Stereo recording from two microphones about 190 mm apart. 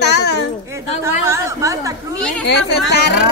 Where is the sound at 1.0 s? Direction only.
15° right (ahead or behind).